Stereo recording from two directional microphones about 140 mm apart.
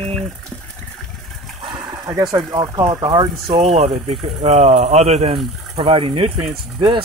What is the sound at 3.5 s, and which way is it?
Speech, 45° right (ahead or behind).